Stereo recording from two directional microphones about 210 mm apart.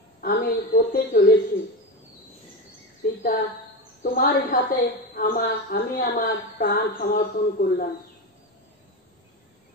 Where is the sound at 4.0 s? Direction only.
45° left (ahead or behind).